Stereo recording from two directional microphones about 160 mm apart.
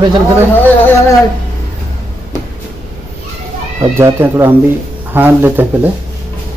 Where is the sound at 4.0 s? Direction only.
15° right (ahead or behind).